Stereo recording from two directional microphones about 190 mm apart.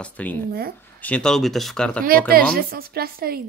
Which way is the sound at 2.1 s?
50° right (ahead or behind).